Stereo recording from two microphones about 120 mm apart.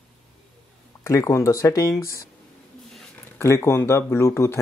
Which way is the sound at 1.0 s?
25° left (ahead or behind).